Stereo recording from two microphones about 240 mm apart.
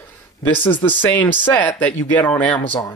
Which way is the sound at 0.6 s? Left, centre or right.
Centre.